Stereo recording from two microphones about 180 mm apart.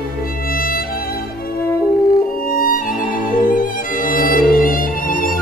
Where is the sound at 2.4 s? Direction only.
50° left (ahead or behind).